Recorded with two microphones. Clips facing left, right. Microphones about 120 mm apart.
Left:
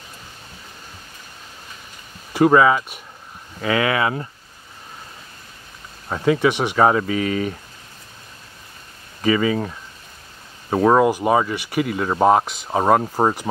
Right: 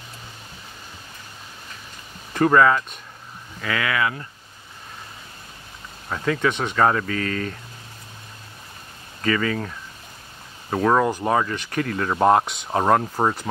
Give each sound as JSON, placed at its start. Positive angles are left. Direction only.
{"t": 2.3, "sound": "speech", "side_deg": 10}
{"t": 3.6, "sound": "speech", "side_deg": 25}
{"t": 6.0, "sound": "speech", "side_deg": 20}
{"t": 9.2, "sound": "speech", "side_deg": 15}